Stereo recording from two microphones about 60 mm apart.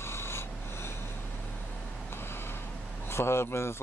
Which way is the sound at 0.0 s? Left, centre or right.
Left.